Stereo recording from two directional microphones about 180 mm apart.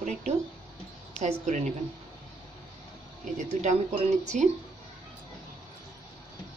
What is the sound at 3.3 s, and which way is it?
Speech, 40° right (ahead or behind).